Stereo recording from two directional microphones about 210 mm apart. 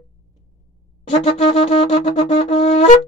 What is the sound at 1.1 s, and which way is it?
Shofar, 30° left (ahead or behind).